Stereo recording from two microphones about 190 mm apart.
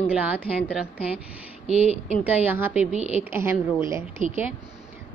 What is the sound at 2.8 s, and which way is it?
Speech, 35° right (ahead or behind).